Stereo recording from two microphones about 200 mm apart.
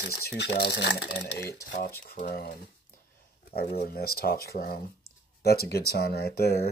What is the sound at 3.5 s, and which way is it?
Speech, 50° left (ahead or behind).